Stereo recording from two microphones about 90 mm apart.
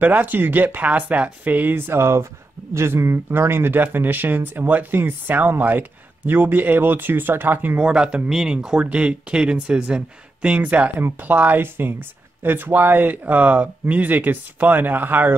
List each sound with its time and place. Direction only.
0.0 s speech: 20° right (ahead or behind)
7.8 s speech: 10° right (ahead or behind)